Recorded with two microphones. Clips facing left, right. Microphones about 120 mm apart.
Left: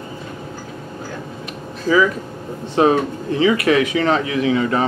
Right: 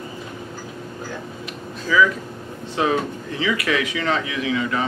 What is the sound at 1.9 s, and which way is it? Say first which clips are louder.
A man's voice: left 3 dB; 45° left (ahead or behind).